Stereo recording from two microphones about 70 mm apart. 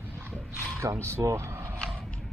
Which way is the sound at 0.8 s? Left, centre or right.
Right.